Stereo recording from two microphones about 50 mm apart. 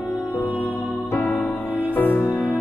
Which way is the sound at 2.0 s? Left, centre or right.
Left.